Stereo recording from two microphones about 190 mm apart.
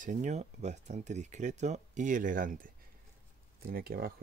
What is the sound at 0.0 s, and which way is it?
Speech, 40° right (ahead or behind).